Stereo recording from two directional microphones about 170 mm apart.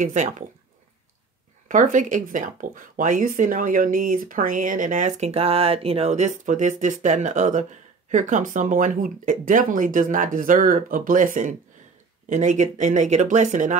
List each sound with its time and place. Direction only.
0.0 s speech: 45° right (ahead or behind)
1.7 s speech: 50° right (ahead or behind)